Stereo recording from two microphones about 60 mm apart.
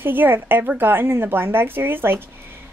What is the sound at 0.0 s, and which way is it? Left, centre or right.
A woman's voice, right.